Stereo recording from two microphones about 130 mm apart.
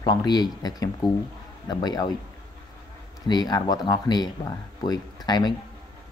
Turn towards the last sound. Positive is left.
turn(degrees=30)  # may be behind; listen again after turning